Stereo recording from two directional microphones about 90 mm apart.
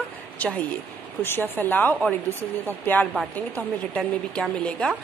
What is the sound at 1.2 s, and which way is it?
A woman's voice, 25° left (ahead or behind).